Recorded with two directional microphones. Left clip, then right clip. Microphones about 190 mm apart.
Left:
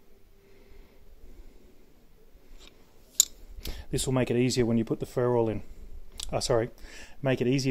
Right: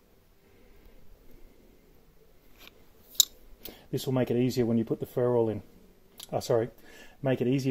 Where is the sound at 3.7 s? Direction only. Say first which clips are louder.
Left 1 dB; 20° left (ahead or behind).